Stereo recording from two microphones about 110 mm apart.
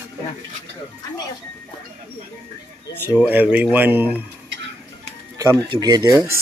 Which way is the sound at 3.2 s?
10° right (ahead or behind).